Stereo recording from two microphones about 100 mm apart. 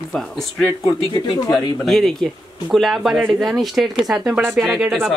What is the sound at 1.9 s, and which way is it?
Speech, 5° left (ahead or behind).